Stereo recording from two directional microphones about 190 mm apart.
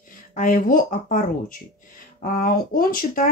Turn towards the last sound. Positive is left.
turn(degrees=50)  # may be behind; listen again after turning